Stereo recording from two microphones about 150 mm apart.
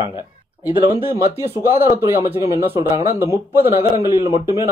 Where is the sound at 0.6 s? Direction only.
15° right (ahead or behind).